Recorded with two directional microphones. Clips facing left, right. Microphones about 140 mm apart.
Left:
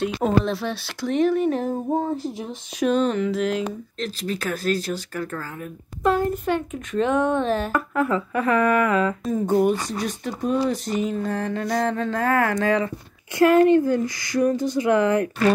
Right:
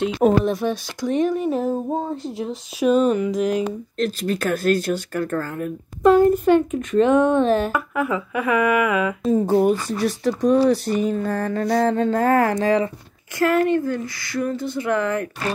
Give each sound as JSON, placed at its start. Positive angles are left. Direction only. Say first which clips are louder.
{"t": 0.0, "sound": "a child's voice", "louder": "right 4 dB", "side_deg": -15}
{"t": 1.5, "sound": "a sound", "louder": "right 1 dB", "side_deg": -5}
{"t": 4.0, "sound": "speech", "louder": "right 6 dB", "side_deg": -50}
{"t": 6.0, "sound": "a child's voice", "louder": "right 7 dB", "side_deg": -5}
{"t": 9.3, "sound": "speech", "louder": "right 4 dB", "side_deg": -35}
{"t": 11.2, "sound": "speech", "louder": "right 3 dB", "side_deg": -55}
{"t": 13.4, "sound": "speech", "louder": "left 3 dB", "side_deg": 20}